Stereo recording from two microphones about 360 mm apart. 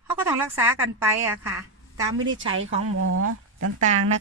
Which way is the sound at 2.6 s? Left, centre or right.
Right.